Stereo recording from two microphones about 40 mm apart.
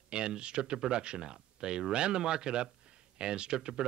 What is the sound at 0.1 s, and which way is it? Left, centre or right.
Speech, right.